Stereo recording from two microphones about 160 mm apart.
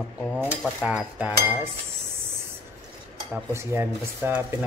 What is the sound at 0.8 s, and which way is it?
Speech, 5° right (ahead or behind).